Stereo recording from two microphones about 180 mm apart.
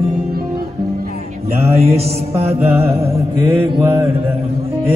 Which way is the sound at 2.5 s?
15° right (ahead or behind).